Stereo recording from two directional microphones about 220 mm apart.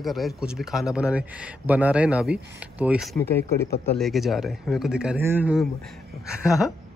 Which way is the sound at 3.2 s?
10° left (ahead or behind).